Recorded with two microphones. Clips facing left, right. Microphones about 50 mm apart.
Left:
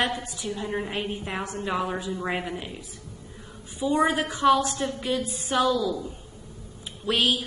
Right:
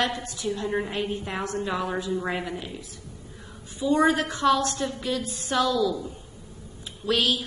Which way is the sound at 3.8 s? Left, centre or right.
Left.